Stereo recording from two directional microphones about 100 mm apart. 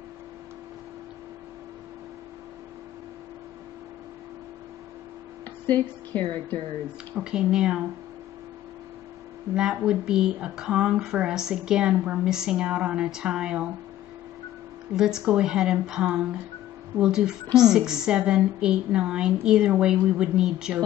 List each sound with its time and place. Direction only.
5.7 s a woman's voice: 20° left (ahead or behind)
7.2 s speech: 5° right (ahead or behind)
9.6 s speech: 5° right (ahead or behind)
15.0 s speech: 5° right (ahead or behind)